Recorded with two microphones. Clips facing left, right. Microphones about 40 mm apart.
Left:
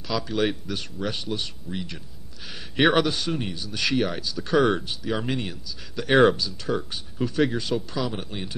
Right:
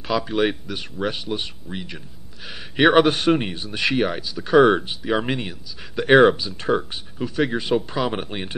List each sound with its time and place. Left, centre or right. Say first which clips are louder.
0.0 s speech: right 4 dB; right
1.0 s speech: right 6 dB; right
1.3 s speech: right 2 dB; right
3.0 s speech: right 8 dB; right
6.1 s speech: right 4 dB; centre
6.4 s speech: right 5 dB; right
7.2 s speech: even; centre
7.5 s speech: right 5 dB; right